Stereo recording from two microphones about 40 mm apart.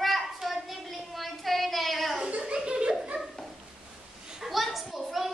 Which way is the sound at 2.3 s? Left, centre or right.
Right.